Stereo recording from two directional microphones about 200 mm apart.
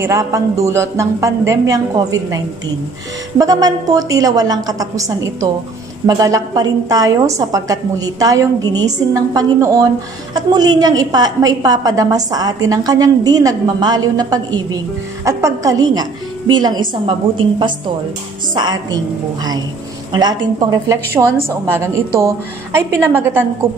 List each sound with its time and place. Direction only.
0.0 s a woman's voice: 15° right (ahead or behind)
20.1 s a woman's voice: 20° right (ahead or behind)